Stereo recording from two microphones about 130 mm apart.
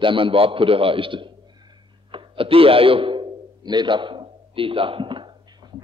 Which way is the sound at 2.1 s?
45° right (ahead or behind).